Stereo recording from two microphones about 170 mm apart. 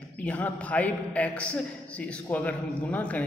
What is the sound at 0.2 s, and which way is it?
A man's voice, 10° left (ahead or behind).